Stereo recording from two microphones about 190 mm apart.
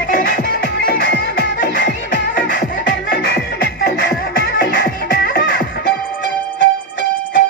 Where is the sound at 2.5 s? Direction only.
50° left (ahead or behind).